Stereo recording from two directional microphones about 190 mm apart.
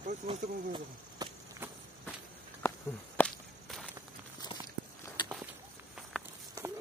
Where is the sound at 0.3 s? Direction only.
25° right (ahead or behind).